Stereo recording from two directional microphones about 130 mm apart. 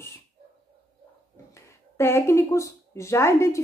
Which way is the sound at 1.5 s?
20° left (ahead or behind).